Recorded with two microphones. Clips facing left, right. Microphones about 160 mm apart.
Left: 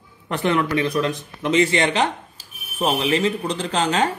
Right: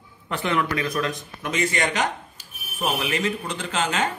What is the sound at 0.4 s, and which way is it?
Speech, 30° left (ahead or behind).